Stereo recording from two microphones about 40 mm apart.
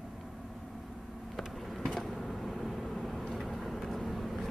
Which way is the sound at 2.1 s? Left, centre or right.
Centre.